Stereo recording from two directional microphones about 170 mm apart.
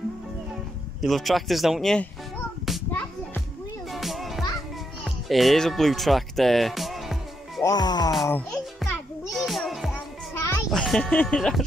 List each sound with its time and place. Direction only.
1.0 s speech: centre (ahead or behind)
2.9 s music: 10° left (ahead or behind)
3.9 s music: centre (ahead or behind)
7.6 s music: 25° left (ahead or behind)
8.3 s a child's voice: 10° left (ahead or behind)
9.3 s music: centre (ahead or behind)
10.3 s music: 15° left (ahead or behind)
10.7 s speech: 5° left (ahead or behind)